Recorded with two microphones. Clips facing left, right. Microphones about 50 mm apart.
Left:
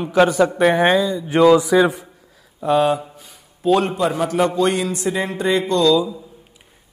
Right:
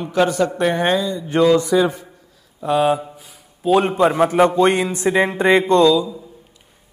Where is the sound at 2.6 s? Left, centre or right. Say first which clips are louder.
Even; centre.